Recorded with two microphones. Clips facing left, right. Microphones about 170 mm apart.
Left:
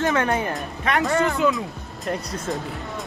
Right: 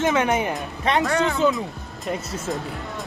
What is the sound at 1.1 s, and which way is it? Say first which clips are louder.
Speech: left 2 dB; centre (ahead or behind).